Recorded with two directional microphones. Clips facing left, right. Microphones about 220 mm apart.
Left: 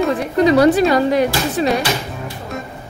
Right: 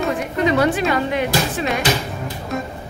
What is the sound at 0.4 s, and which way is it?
Speech, 35° left (ahead or behind).